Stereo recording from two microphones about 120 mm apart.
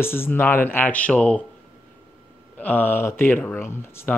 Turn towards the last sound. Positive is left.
turn(degrees=20)  # may be behind; listen again after turning